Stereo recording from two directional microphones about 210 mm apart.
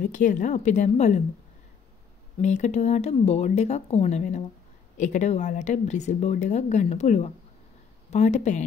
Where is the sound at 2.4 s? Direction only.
35° left (ahead or behind).